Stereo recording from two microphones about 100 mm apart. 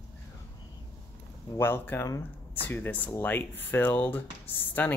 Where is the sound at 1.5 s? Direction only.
20° left (ahead or behind).